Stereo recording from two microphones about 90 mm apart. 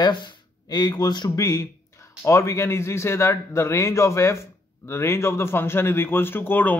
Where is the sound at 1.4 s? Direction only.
35° left (ahead or behind).